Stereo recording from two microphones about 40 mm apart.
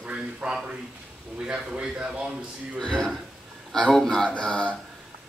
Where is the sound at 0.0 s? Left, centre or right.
Right.